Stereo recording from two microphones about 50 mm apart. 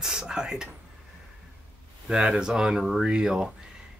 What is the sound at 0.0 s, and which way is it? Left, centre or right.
Speech, centre.